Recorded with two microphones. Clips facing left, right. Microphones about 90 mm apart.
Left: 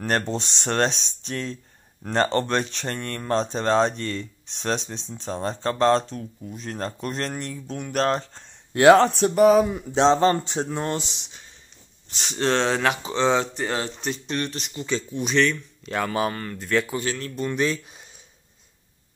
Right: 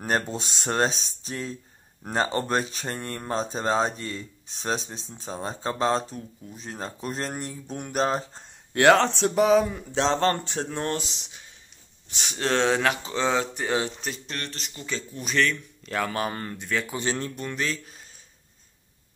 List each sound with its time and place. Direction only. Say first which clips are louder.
0.0 s speech: left 2 dB; 10° right (ahead or behind)
8.8 s speech: left 4 dB; 10° left (ahead or behind)
9.7 s speech: left 6 dB; 15° left (ahead or behind); by 16.8 s centre (ahead or behind)
16.9 s speech: left 1 dB; 25° right (ahead or behind)
17.6 s speech: left 6 dB; 15° left (ahead or behind)